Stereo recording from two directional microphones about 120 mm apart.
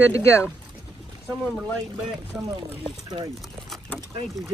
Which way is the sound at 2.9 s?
35° right (ahead or behind).